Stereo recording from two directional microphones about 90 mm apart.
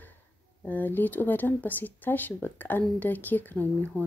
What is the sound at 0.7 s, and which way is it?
Speech, 20° left (ahead or behind).